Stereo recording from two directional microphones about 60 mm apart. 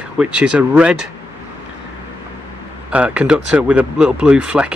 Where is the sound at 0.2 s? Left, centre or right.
Centre.